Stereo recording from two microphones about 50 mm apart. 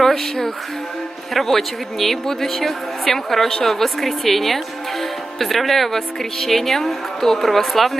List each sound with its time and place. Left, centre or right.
0.0 s a woman's voice: centre